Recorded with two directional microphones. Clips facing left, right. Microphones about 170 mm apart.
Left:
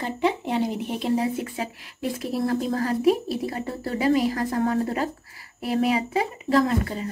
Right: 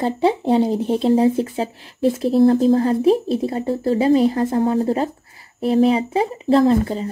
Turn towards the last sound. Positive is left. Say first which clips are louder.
# right 7 dB
turn(degrees=-30)  # may be behind; listen again after turning